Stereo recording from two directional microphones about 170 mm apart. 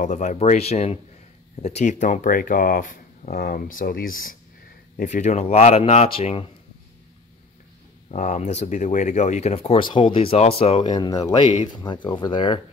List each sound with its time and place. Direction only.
0.0 s speech: 45° left (ahead or behind)
8.1 s speech: 45° left (ahead or behind); by 12.5 s 30° left (ahead or behind)